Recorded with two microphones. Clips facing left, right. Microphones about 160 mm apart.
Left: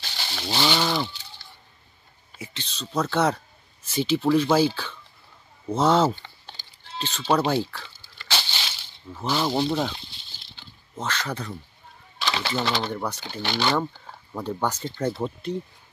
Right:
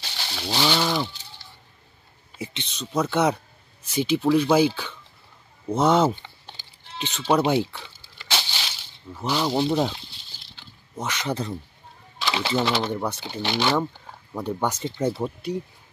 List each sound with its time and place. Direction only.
0.0 s a sound: centre (ahead or behind)
2.5 s speech: 20° right (ahead or behind)
6.5 s a sound: 15° right (ahead or behind)
8.4 s crushing: centre (ahead or behind)
9.1 s speech: centre (ahead or behind)
11.0 s speech: 15° right (ahead or behind)
12.2 s typewriter: 5° right (ahead or behind)
12.6 s speech: 5° right (ahead or behind)
13.1 s speech: 20° right (ahead or behind); by 14.1 s 5° right (ahead or behind)
14.3 s speech: 15° right (ahead or behind)
15.0 s speech: 5° right (ahead or behind)